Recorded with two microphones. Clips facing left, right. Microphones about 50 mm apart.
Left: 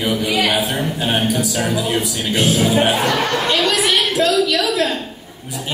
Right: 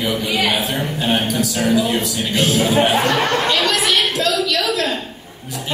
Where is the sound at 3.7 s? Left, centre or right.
Centre.